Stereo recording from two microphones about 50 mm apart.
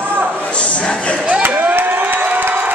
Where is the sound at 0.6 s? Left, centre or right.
Left.